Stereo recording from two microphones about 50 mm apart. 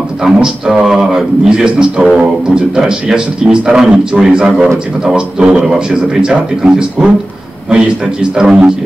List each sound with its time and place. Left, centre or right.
0.2 s speech: centre